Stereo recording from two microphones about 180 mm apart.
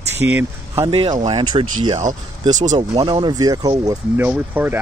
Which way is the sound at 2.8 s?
25° right (ahead or behind).